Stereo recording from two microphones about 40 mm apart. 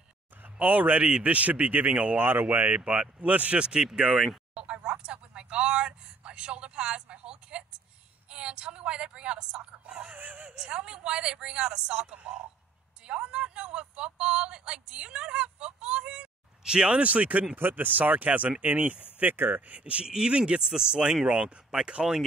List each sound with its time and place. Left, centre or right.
0.6 s speech: right
1.9 s speech: right
2.1 s speech: right
2.6 s speech: right
3.6 s speech: right
4.6 s a sound: right
8.3 s speech: right
9.9 s speech: right
10.5 s speech: right
17.0 s speech: right
17.6 s speech: right
19.3 s speech: right
19.8 s speech: right